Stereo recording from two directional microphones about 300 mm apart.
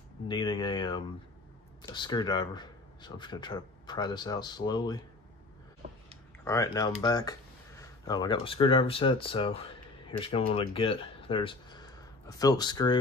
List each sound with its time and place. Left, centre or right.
0.3 s speech: centre
6.4 s speech: centre